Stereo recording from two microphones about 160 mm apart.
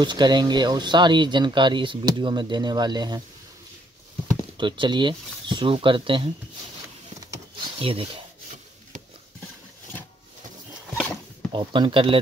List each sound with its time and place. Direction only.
0.0 s speech: 30° right (ahead or behind)
4.6 s speech: 30° right (ahead or behind)
7.8 s speech: 35° right (ahead or behind)
11.5 s speech: 30° right (ahead or behind)